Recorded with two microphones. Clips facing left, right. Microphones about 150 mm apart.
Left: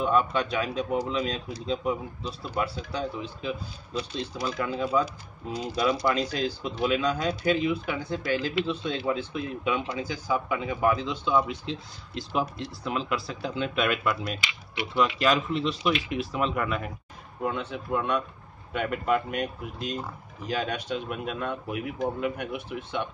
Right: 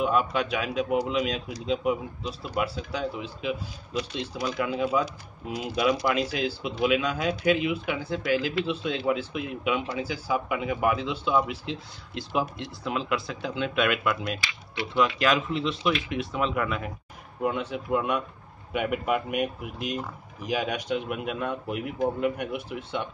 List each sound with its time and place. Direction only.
0.0 s speech: 10° right (ahead or behind)
3.9 s speech: 35° left (ahead or behind)
4.6 s speech: 10° right (ahead or behind)
14.4 s speech: 20° left (ahead or behind)
15.1 s speech: centre (ahead or behind)
17.4 s speech: 10° right (ahead or behind)